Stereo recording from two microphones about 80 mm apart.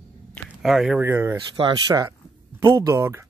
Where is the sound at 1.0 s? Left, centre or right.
Right.